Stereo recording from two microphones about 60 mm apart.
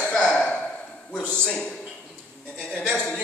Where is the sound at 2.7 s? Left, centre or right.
Centre.